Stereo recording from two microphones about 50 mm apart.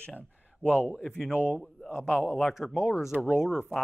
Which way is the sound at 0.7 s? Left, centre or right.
Right.